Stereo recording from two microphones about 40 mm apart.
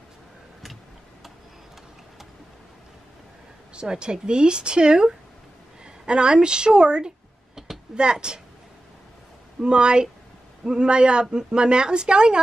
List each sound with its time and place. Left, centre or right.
3.7 s speech: centre
7.5 s a sound: centre
7.9 s speech: right
9.6 s speech: right